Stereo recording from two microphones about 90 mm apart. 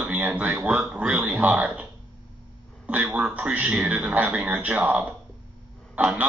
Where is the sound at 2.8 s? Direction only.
15° right (ahead or behind).